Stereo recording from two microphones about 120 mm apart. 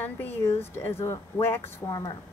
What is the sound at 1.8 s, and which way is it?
Speech, 30° left (ahead or behind).